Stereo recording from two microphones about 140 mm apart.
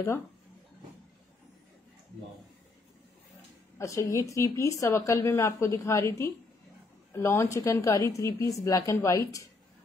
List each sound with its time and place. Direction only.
3.7 s a woman's voice: 20° left (ahead or behind)